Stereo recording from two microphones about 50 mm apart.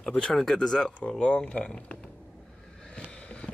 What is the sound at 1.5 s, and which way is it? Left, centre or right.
Speech, left.